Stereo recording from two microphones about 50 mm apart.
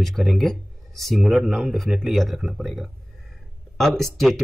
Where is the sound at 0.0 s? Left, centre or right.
Centre.